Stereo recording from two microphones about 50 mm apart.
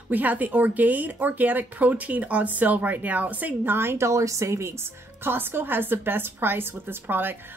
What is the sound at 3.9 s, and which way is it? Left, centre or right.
A woman's voice, right.